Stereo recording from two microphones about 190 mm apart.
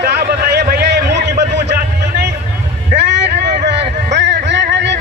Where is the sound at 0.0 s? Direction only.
55° right (ahead or behind).